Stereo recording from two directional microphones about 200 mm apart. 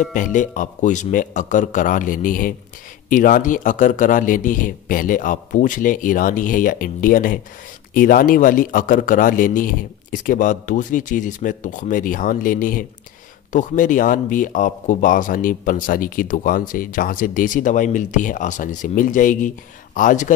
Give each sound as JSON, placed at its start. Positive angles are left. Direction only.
{"t": 0.0, "sound": "speech", "side_deg": 40}